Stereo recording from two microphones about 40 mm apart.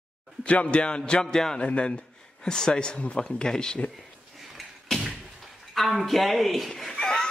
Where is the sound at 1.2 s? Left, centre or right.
Centre.